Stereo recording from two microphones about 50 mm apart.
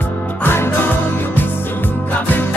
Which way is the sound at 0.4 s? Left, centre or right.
Left.